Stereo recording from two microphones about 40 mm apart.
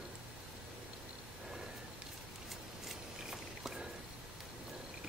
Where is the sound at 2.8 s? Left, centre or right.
Centre.